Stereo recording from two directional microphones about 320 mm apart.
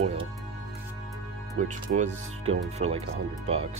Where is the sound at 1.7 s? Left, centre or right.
Right.